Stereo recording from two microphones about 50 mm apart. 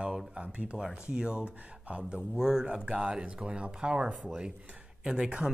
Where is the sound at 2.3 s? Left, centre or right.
Centre.